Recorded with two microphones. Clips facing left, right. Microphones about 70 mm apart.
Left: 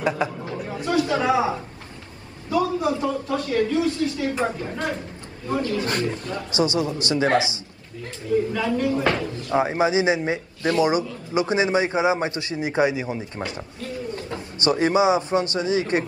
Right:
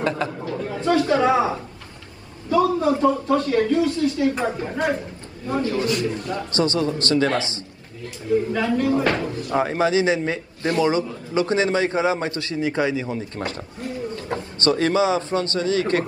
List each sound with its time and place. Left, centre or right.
0.0 s speech: centre
0.8 s a man's voice: right
2.5 s a man's voice: right
5.9 s a man's voice: left
6.5 s speech: centre
8.5 s a man's voice: right
9.5 s a man's voice: centre
14.6 s a man's voice: centre